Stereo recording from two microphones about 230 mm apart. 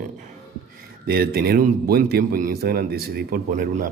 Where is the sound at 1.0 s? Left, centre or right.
Right.